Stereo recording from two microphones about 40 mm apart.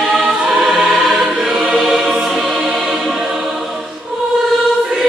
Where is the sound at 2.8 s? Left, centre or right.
Centre.